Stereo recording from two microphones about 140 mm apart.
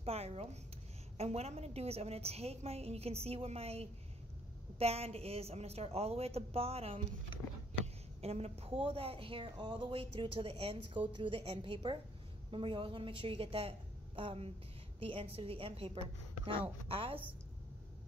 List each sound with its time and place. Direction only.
0.0 s a woman's voice: 45° right (ahead or behind)